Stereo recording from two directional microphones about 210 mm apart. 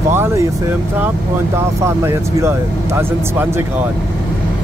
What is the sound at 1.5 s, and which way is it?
Speech, 10° right (ahead or behind).